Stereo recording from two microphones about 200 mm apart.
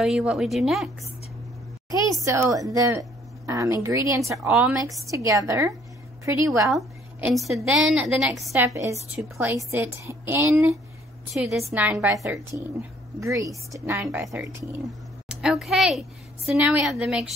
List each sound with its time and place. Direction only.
0.0 s a woman's voice: 5° right (ahead or behind)
1.9 s a woman's voice: 15° right (ahead or behind)
6.7 s a woman's voice: 5° right (ahead or behind)
8.5 s a woman's voice: 15° right (ahead or behind)
11.3 s a woman's voice: centre (ahead or behind)